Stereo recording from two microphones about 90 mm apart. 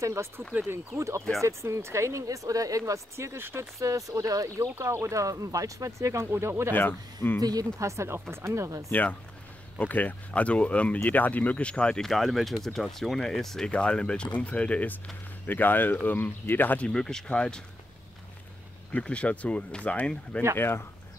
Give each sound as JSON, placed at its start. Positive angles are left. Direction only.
{"t": 0.0, "sound": "speech", "side_deg": -30}
{"t": 3.8, "sound": "speech", "side_deg": -40}
{"t": 6.7, "sound": "speech", "side_deg": 20}
{"t": 7.4, "sound": "speech", "side_deg": -40}
{"t": 9.8, "sound": "speech", "side_deg": 20}
{"t": 18.9, "sound": "speech", "side_deg": 15}
{"t": 20.5, "sound": "speech", "side_deg": 25}